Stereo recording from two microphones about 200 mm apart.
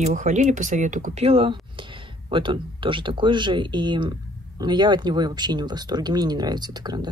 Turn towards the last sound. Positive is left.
turn(degrees=-20)  # may be behind; listen again after turning